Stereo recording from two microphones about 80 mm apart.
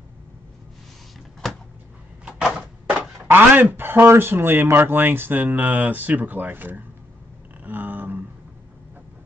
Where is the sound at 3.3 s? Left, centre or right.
Right.